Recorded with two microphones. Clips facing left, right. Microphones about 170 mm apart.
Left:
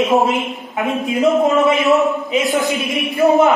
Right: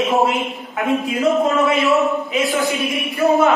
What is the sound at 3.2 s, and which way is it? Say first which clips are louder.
Speech: left 2 dB; 20° left (ahead or behind).